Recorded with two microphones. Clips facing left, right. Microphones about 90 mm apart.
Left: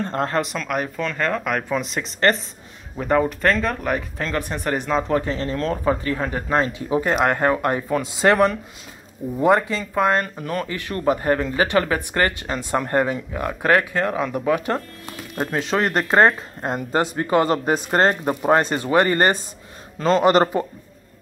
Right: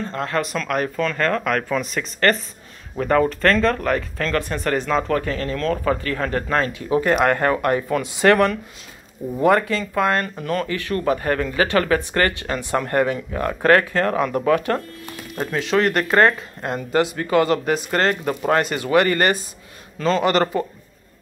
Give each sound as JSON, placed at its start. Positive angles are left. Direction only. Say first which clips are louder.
{"t": 0.0, "sound": "speech", "louder": "left 3 dB", "side_deg": 45}
{"t": 0.3, "sound": "speech", "louder": "right 1 dB", "side_deg": 20}
{"t": 15.5, "sound": "speech", "louder": "right 2 dB", "side_deg": 35}
{"t": 18.2, "sound": "speech", "louder": "left 2 dB", "side_deg": 20}
{"t": 18.6, "sound": "speech", "louder": "even", "side_deg": 30}